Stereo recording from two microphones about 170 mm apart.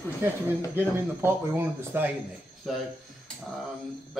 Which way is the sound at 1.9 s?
10° right (ahead or behind).